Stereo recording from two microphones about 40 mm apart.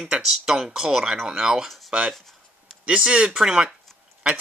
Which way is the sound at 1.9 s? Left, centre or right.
Right.